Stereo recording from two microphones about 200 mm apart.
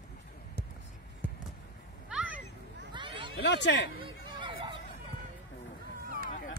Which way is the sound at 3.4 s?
60° left (ahead or behind).